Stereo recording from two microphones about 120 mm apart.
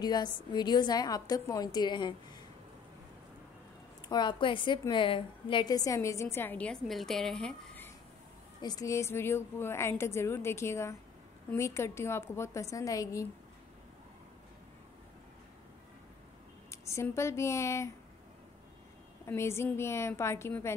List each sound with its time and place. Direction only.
0.0 s a woman's voice: 35° left (ahead or behind)
4.1 s a woman's voice: 40° left (ahead or behind); by 6.8 s 15° left (ahead or behind)
6.9 s a woman's voice: 5° left (ahead or behind)
8.5 s a woman's voice: 35° left (ahead or behind)
16.8 s a woman's voice: 25° left (ahead or behind)
19.2 s a woman's voice: 20° left (ahead or behind)